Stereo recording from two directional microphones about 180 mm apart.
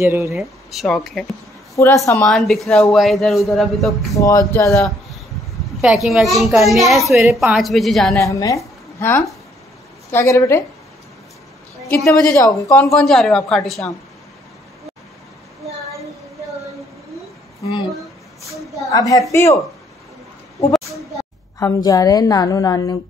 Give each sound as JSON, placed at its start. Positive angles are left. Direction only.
{"t": 0.0, "sound": "speech", "side_deg": -15}
{"t": 0.4, "sound": "a man's voice", "side_deg": 0}
{"t": 4.1, "sound": "speech", "side_deg": 20}
{"t": 6.0, "sound": "a man's voice", "side_deg": 0}
{"t": 8.2, "sound": "speech", "side_deg": 20}
{"t": 11.9, "sound": "speech", "side_deg": 10}
{"t": 12.9, "sound": "a man's voice", "side_deg": 0}
{"t": 18.9, "sound": "a woman's voice", "side_deg": 20}
{"t": 21.5, "sound": "a woman's voice", "side_deg": 20}